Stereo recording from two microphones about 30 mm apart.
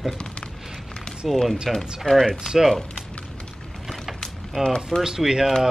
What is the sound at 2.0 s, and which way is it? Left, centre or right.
Speech, centre.